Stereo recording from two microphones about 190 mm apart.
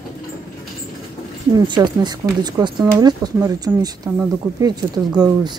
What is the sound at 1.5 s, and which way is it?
Speech, 25° right (ahead or behind).